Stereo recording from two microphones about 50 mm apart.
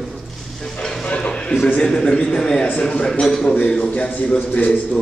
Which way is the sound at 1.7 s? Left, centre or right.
Centre.